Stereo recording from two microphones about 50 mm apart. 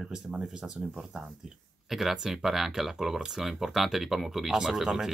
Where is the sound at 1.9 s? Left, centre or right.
Centre.